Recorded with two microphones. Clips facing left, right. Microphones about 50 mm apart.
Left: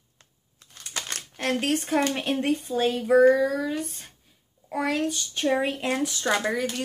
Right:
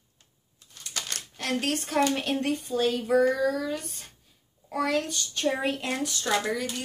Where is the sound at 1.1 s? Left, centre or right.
Left.